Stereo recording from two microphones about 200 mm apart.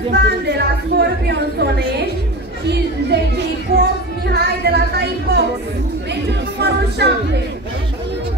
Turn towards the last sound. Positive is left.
turn(degrees=-55)  # may be behind; listen again after turning